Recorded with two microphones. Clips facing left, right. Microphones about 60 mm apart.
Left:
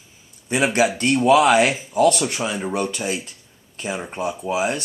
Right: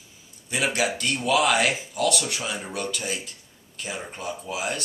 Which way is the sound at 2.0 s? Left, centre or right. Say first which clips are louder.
Left 6 dB; left.